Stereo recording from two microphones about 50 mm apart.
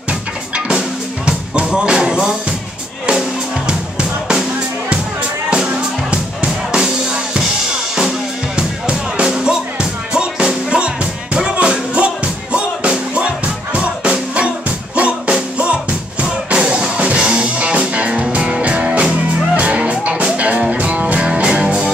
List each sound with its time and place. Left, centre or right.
0.7 s music: centre
3.6 s music: centre
8.5 s music: centre
21.0 s music: right